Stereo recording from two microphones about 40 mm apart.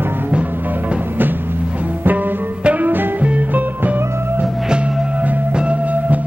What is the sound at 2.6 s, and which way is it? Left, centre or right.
Music, right.